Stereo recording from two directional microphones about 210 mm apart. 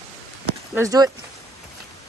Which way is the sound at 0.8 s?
15° right (ahead or behind).